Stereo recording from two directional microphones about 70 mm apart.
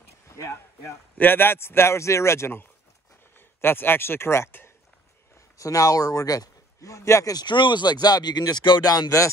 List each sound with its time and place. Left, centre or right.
0.3 s speech: left
1.1 s a man's voice: left
5.6 s speech: left
7.3 s speech: left